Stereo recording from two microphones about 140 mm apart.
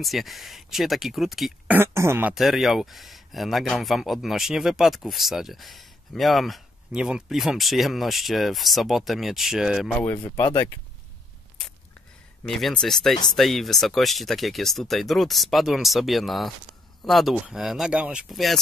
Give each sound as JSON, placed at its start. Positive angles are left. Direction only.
{"t": 0.0, "sound": "speech", "side_deg": 0}
{"t": 1.7, "sound": "speech", "side_deg": -15}
{"t": 2.3, "sound": "speech", "side_deg": 0}
{"t": 9.9, "sound": "speech", "side_deg": 15}
{"t": 12.4, "sound": "speech", "side_deg": 0}